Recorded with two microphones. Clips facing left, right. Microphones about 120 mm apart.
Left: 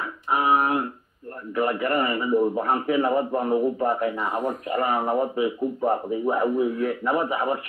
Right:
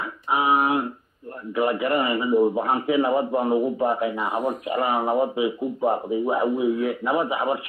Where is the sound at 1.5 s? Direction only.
5° right (ahead or behind).